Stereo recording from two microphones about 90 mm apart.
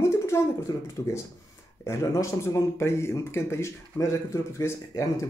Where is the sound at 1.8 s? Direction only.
40° left (ahead or behind).